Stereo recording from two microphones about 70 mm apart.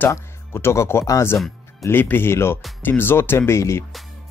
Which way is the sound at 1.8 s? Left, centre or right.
Left.